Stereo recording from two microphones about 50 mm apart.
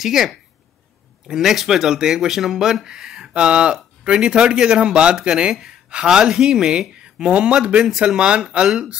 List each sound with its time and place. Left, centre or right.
0.0 s speech: centre